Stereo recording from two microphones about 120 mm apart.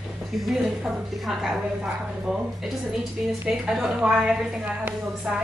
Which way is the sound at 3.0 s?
5° right (ahead or behind).